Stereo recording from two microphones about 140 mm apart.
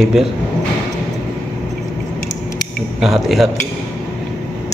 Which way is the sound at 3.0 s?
Centre (ahead or behind).